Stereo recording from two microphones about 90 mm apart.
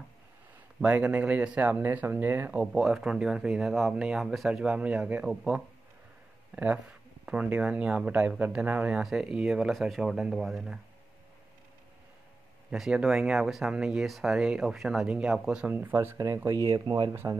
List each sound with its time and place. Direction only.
0.8 s speech: 15° right (ahead or behind)
2.6 s speech: 5° right (ahead or behind)
5.3 s speech: 5° right (ahead or behind)
6.5 s speech: 15° right (ahead or behind)
9.0 s speech: 5° right (ahead or behind)
12.7 s speech: 5° right (ahead or behind)
15.7 s speech: 25° right (ahead or behind)
16.8 s speech: 45° right (ahead or behind)
17.1 s speech: 25° right (ahead or behind)